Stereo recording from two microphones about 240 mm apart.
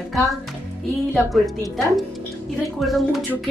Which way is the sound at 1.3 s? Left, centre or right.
Centre.